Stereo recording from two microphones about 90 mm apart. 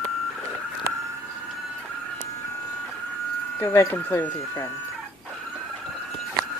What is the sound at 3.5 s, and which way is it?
Speech, 25° left (ahead or behind).